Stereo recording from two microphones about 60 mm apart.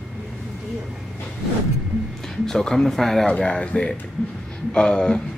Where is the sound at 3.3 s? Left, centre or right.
Centre.